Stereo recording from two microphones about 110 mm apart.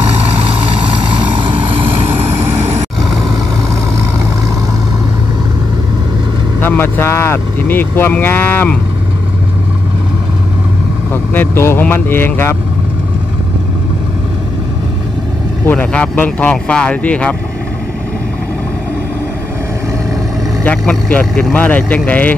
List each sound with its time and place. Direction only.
0.4 s vehicle: 60° right (ahead or behind)
6.6 s speech: 20° left (ahead or behind)
11.3 s speech: 20° left (ahead or behind)
15.6 s speech: 15° left (ahead or behind)
20.6 s vehicle: 10° left (ahead or behind)
21.5 s speech: 15° left (ahead or behind)